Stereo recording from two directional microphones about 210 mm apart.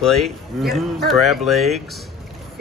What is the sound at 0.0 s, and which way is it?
Speech, centre (ahead or behind).